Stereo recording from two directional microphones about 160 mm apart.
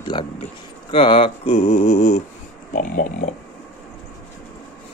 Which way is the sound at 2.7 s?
60° left (ahead or behind).